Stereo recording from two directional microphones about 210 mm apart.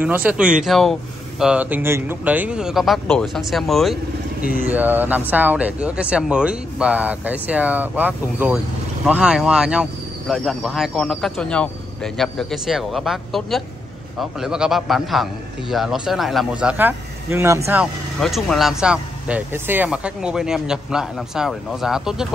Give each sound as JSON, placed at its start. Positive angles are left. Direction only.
{"t": 0.0, "sound": "speech", "side_deg": -5}
{"t": 4.4, "sound": "speech", "side_deg": 45}
{"t": 4.6, "sound": "speech", "side_deg": -10}
{"t": 18.2, "sound": "speech", "side_deg": 0}